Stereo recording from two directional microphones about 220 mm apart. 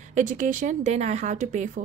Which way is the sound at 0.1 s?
35° right (ahead or behind).